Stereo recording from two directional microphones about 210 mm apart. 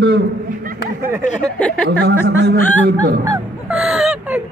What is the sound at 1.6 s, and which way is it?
Speech, 5° left (ahead or behind).